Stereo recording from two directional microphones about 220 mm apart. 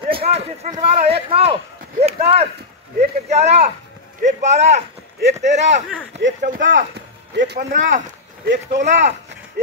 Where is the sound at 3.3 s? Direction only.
30° right (ahead or behind).